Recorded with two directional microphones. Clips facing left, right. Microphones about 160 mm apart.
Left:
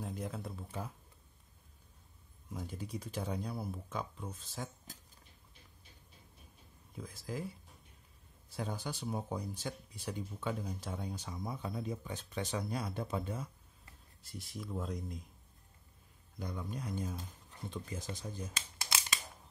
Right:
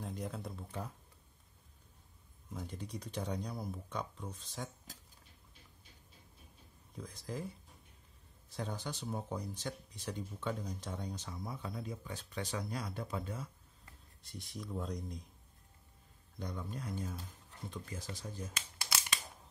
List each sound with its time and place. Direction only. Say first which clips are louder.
0.0 s speech: left 1 dB; centre (ahead or behind)
2.5 s speech: left 2 dB; 5° left (ahead or behind)
7.0 s speech: left 1 dB; 5° left (ahead or behind)
8.5 s speech: left 1 dB; 10° left (ahead or behind)
14.2 s speech: left 1 dB; centre (ahead or behind)
16.3 s speech: left 1 dB; 10° left (ahead or behind)
16.8 s speech: left 2 dB; 20° left (ahead or behind)